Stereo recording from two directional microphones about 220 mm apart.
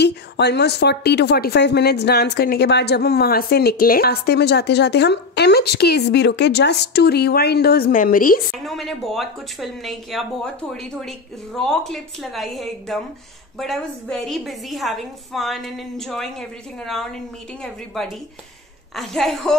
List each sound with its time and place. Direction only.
0.0 s speech: 50° left (ahead or behind)
8.6 s a woman's voice: centre (ahead or behind)